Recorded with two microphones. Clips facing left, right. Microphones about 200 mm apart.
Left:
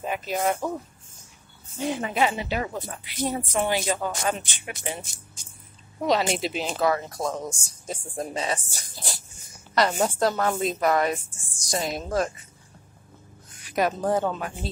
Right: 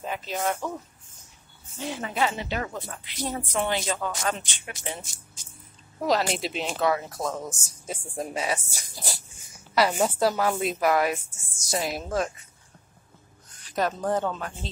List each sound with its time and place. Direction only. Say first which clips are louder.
0.0 s speech: left 3 dB; 15° left (ahead or behind)
1.8 s speech: left 3 dB; 15° left (ahead or behind)
6.0 s a woman's voice: left 1 dB; centre (ahead or behind)
13.7 s speech: left 2 dB; 10° left (ahead or behind)